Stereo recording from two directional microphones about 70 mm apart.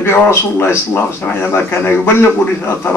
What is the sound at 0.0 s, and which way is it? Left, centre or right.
Speech, left.